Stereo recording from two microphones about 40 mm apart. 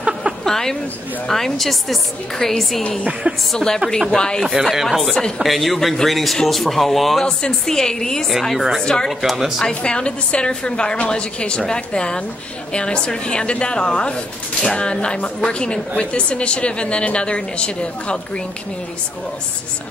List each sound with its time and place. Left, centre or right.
0.5 s a woman's voice: centre
3.0 s a woman's voice: right
3.5 s a woman's voice: centre
4.4 s speech: centre
5.4 s speech: centre
7.2 s a woman's voice: centre
8.5 s speech: centre
8.8 s a woman's voice: centre
9.2 s speech: centre
9.7 s a woman's voice: left